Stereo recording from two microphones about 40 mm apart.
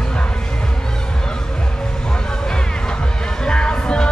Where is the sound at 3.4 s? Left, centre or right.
Left.